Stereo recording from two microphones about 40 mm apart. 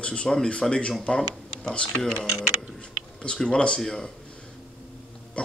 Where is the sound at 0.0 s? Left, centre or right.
Left.